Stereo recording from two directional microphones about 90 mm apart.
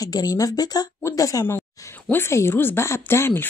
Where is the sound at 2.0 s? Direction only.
25° left (ahead or behind).